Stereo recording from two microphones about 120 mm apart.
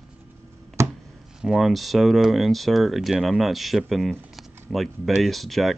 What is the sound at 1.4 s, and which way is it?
Speech, 5° right (ahead or behind).